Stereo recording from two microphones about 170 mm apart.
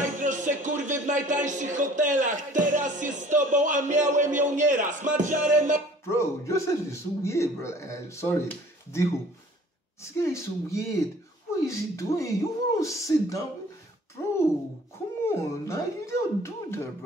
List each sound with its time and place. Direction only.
0.0 s speech: 45° right (ahead or behind)
6.0 s a man's voice: 15° left (ahead or behind)
10.0 s a man's voice: 15° left (ahead or behind)
15.2 s a man's voice: 15° left (ahead or behind)